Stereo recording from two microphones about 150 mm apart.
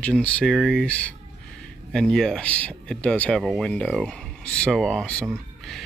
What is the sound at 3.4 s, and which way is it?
Speech, 5° right (ahead or behind).